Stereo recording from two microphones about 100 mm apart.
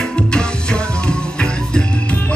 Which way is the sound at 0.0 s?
10° left (ahead or behind).